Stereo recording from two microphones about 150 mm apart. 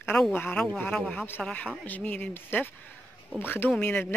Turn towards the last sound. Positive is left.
turn(degrees=10)  # may be behind; listen again after turning